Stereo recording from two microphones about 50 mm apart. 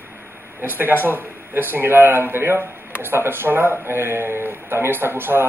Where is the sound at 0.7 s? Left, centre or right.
Right.